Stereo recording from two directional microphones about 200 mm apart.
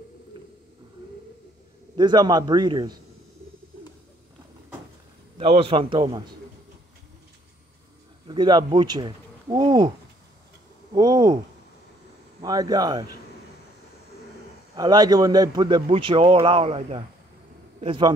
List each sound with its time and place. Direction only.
0.3 s a sound: 25° right (ahead or behind)
2.0 s a man's voice: 20° right (ahead or behind)
5.4 s a man's voice: 30° right (ahead or behind)
8.3 s speech: 20° right (ahead or behind)
11.0 s a man's voice: 20° right (ahead or behind)
12.4 s a man's voice: 20° right (ahead or behind)
14.8 s a man's voice: 20° right (ahead or behind)